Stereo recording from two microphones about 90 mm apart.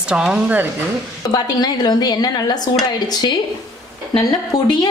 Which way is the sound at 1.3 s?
45° left (ahead or behind).